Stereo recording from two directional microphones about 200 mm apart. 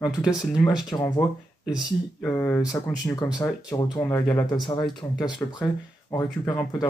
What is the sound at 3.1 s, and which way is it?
Speech, 15° left (ahead or behind).